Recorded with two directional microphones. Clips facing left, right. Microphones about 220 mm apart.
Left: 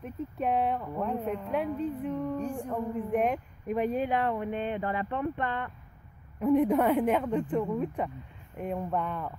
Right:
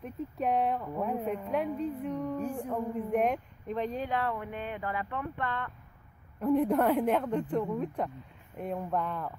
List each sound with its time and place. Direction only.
0.0 s a man's voice: centre (ahead or behind)
3.7 s speech: 10° left (ahead or behind)